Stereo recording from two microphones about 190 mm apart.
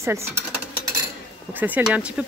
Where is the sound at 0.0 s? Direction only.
15° right (ahead or behind).